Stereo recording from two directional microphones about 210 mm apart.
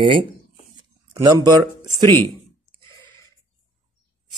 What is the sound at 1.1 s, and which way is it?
Speech, 20° right (ahead or behind).